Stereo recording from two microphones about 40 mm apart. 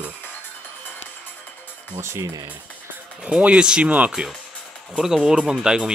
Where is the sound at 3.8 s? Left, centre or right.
Right.